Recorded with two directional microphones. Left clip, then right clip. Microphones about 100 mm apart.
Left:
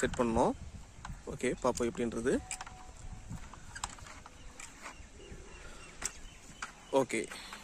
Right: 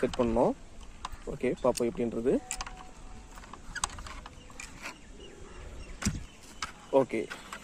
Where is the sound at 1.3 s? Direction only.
45° left (ahead or behind).